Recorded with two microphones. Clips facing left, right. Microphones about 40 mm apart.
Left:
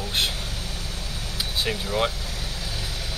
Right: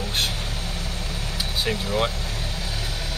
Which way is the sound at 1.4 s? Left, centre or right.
Centre.